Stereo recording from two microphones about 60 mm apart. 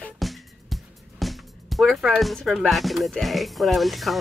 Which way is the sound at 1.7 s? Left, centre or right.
Centre.